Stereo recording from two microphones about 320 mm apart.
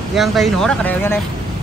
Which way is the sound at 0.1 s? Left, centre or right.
Centre.